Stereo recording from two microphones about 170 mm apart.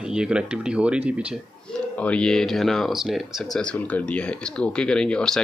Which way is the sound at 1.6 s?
5° left (ahead or behind).